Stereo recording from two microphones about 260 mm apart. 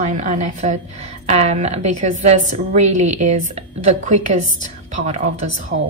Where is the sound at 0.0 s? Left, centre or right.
Right.